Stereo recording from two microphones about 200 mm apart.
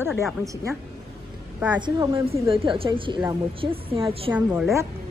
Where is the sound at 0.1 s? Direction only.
Centre (ahead or behind).